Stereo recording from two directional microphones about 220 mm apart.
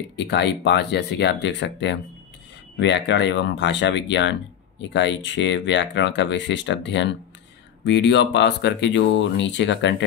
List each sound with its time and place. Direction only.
0.1 s speech: 50° left (ahead or behind)